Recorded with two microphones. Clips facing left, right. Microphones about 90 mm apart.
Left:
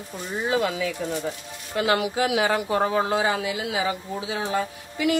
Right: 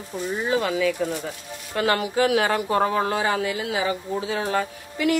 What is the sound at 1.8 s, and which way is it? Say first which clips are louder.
A woman's voice: right 1 dB; 45° right (ahead or behind).